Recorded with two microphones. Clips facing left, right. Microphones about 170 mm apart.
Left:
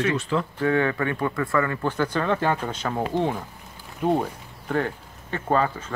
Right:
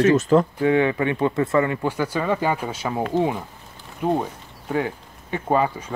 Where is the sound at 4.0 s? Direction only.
Centre (ahead or behind).